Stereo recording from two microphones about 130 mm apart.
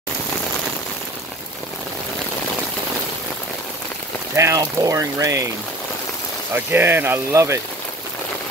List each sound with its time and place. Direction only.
4.4 s speech: 25° right (ahead or behind)
6.5 s speech: 15° right (ahead or behind)